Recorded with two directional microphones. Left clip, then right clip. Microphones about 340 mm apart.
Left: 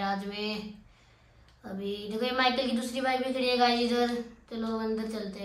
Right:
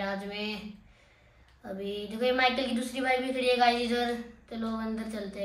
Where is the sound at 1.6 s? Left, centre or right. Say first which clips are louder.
Even; centre.